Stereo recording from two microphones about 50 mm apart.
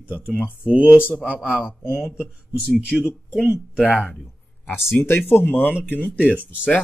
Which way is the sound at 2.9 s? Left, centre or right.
Centre.